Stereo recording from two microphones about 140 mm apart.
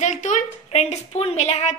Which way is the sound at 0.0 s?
60° left (ahead or behind).